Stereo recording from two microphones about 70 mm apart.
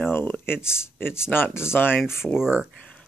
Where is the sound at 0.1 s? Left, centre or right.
Left.